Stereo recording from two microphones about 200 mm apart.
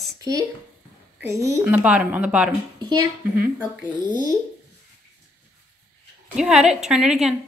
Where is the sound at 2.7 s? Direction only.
20° right (ahead or behind).